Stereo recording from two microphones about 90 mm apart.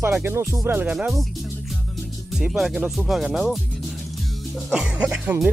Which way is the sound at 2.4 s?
5° right (ahead or behind).